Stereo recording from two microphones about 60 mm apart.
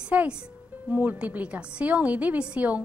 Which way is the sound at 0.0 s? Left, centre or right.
Right.